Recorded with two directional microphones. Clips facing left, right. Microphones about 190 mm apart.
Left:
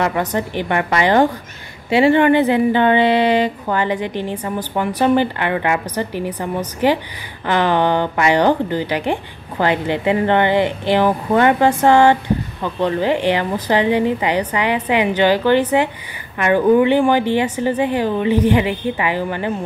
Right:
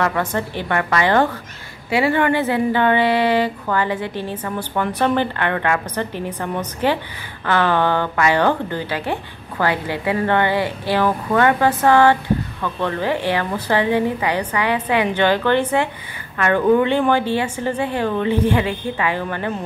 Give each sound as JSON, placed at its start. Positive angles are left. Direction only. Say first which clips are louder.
{"t": 0.0, "sound": "a woman's voice", "louder": "left 2 dB", "side_deg": 20}